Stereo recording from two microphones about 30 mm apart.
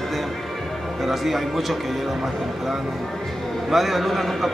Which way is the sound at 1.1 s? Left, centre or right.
Centre.